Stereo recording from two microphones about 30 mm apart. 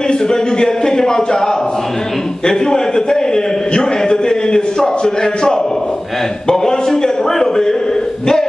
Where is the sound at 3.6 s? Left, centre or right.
Left.